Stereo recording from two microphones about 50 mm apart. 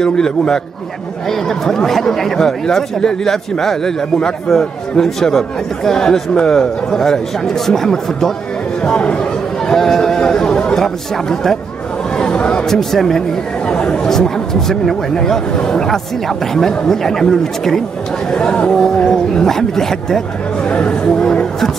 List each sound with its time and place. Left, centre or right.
0.0 s speech: centre
1.7 s speech: centre
8.8 s speech: centre
12.2 s chatter: centre
12.6 s speech: centre
13.7 s speech: centre
20.6 s a sound: centre